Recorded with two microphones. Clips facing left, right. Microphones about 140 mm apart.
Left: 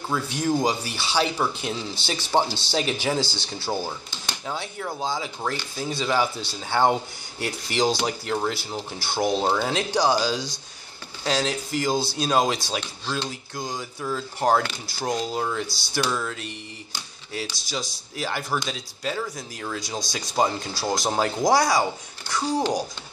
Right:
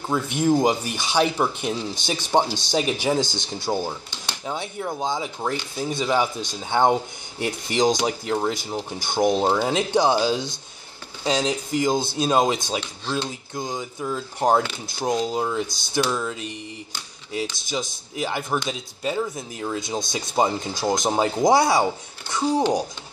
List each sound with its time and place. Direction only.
0.1 s speech: 15° right (ahead or behind)
17.6 s speech: 20° right (ahead or behind)